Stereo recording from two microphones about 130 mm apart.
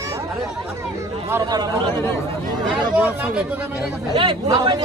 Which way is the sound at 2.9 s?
10° right (ahead or behind).